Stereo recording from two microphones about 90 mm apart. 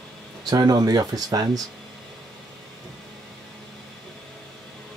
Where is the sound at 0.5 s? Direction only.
45° right (ahead or behind).